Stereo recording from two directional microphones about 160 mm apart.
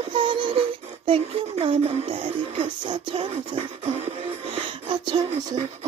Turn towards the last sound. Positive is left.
turn(degrees=-30)  # may be behind; listen again after turning